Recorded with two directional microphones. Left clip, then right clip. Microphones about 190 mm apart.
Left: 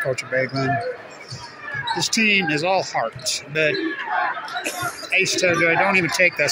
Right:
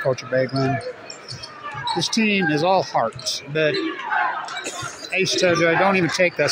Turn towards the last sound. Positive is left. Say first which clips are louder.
# left 1 dB
turn(degrees=-25)  # may be behind; listen again after turning